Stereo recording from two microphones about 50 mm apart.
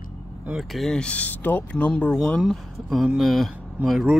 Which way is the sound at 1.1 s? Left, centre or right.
Left.